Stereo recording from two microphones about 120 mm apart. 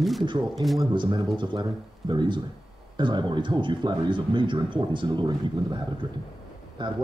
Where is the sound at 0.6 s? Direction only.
40° right (ahead or behind).